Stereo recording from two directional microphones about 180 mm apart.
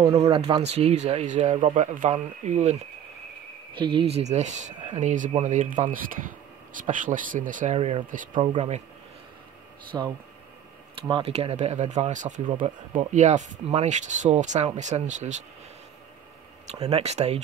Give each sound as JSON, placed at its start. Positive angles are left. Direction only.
{"t": 0.3, "sound": "speech", "side_deg": -35}
{"t": 3.7, "sound": "speech", "side_deg": -30}
{"t": 9.9, "sound": "speech", "side_deg": -15}
{"t": 11.0, "sound": "speech", "side_deg": -30}
{"t": 16.7, "sound": "speech", "side_deg": -35}